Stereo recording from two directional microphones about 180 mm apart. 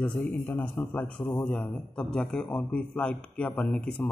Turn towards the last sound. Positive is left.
turn(degrees=5)  # may be behind; listen again after turning